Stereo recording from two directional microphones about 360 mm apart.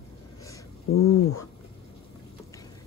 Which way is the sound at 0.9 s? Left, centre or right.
Left.